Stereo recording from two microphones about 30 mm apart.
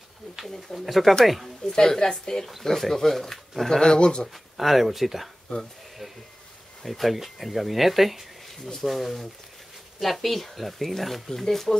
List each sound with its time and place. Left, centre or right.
0.7 s speech: centre
1.7 s speech: centre
2.6 s speech: centre
3.8 s speech: left
4.3 s speech: centre
6.8 s speech: centre